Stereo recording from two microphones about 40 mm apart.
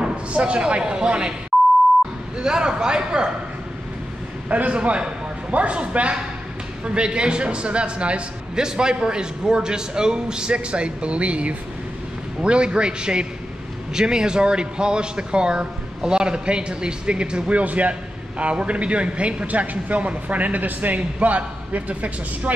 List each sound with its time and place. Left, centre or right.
0.0 s speech: right
2.3 s speech: centre
4.5 s speech: right
4.7 s speech: right